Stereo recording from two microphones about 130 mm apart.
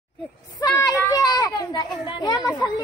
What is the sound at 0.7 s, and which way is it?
Children playing, 25° left (ahead or behind).